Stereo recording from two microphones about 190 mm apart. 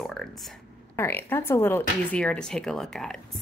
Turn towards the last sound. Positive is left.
turn(degrees=0)  # may be behind; listen again after turning